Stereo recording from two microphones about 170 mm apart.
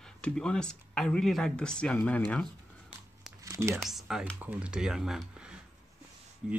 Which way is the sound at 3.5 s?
15° right (ahead or behind).